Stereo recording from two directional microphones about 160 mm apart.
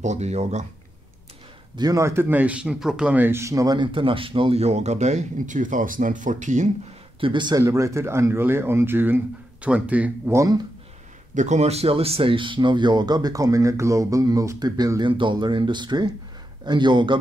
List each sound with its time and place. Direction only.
0.0 s speech: 45° right (ahead or behind)
1.8 s speech: 20° right (ahead or behind); by 6.7 s 50° right (ahead or behind)
7.2 s speech: 30° right (ahead or behind)
7.6 s a man's voice: 20° right (ahead or behind)
11.3 s speech: 45° right (ahead or behind); by 17.2 s 30° right (ahead or behind)